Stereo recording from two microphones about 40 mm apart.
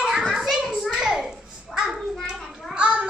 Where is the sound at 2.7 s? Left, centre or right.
Right.